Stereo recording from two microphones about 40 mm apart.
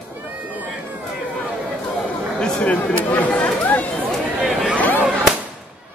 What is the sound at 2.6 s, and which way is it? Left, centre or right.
Speech, left.